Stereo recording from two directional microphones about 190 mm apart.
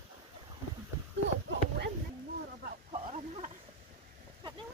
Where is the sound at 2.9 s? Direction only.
35° right (ahead or behind).